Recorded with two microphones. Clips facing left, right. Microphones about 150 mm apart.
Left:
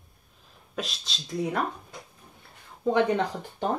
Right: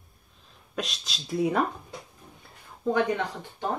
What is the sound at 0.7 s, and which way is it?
Speech, centre (ahead or behind).